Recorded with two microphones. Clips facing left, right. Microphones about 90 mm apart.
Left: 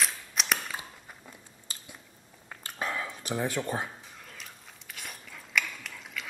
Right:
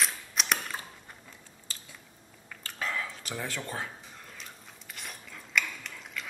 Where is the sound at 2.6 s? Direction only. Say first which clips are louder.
Left 1 dB; 20° left (ahead or behind).